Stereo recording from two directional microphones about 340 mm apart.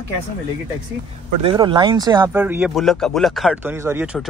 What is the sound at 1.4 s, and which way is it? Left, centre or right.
Speech, centre.